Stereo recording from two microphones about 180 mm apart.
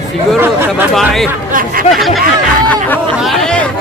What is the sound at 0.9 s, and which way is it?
Speech, centre (ahead or behind).